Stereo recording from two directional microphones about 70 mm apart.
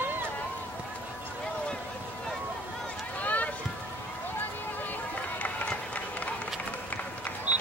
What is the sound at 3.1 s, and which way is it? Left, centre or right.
Run, left.